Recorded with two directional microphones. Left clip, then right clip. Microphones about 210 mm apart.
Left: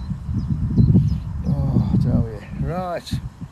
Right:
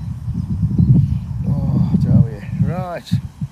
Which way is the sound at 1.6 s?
Centre (ahead or behind).